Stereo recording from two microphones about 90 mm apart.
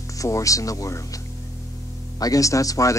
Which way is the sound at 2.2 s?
40° left (ahead or behind).